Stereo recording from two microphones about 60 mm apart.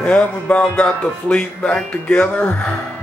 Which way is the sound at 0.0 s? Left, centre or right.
Left.